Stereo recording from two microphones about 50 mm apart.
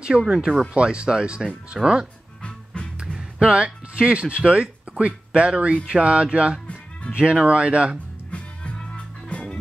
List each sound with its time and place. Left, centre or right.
0.2 s speech: centre
2.4 s music: left
3.2 s speech: right
8.3 s music: left